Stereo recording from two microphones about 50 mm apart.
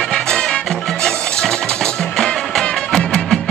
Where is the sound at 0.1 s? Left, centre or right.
Centre.